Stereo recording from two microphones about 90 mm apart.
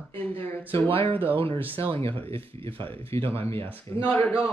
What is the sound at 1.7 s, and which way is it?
Speech, 90° right.